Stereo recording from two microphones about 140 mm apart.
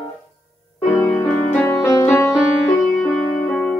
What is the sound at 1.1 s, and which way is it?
Music, 15° left (ahead or behind).